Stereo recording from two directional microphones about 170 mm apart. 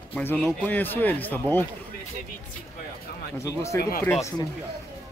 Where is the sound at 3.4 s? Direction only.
20° left (ahead or behind).